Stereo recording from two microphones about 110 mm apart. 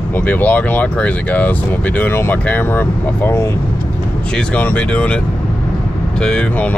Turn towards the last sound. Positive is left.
turn(degrees=10)  # may be behind; listen again after turning